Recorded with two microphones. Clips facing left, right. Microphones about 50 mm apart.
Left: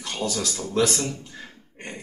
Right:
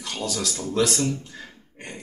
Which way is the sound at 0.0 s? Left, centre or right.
Centre.